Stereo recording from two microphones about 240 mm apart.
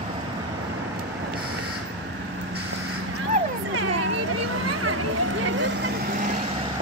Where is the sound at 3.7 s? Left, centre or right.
Right.